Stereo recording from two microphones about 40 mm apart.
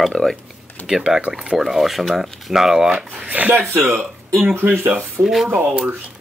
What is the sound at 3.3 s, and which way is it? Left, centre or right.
Speech, right.